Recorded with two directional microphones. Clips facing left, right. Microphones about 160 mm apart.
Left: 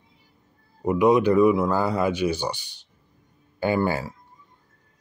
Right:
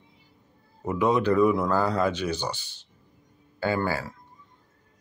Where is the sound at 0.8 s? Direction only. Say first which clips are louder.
Left 5 dB; 15° left (ahead or behind).